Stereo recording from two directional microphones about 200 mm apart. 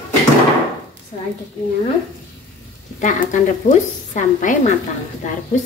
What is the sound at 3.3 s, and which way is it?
A woman's voice, 40° left (ahead or behind).